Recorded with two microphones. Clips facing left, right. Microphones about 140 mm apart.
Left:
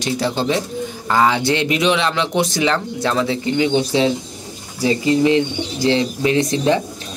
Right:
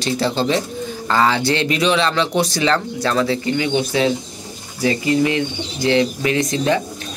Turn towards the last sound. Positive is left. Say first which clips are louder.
# left 2 dB
turn(degrees=25)  # may be behind; listen again after turning